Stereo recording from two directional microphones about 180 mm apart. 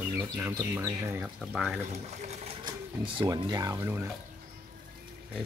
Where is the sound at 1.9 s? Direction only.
40° right (ahead or behind); by 4.1 s 15° right (ahead or behind).